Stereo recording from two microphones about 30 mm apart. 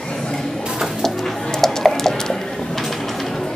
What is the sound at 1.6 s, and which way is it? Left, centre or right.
Bird, centre.